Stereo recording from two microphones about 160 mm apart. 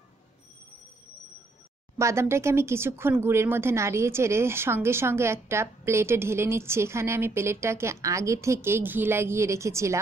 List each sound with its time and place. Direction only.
2.0 s speech: 15° right (ahead or behind)